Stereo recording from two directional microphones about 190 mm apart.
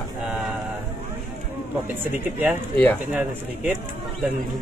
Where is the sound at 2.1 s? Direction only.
10° right (ahead or behind).